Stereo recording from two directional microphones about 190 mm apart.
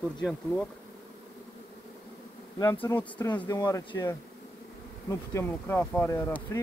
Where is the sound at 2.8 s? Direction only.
10° left (ahead or behind).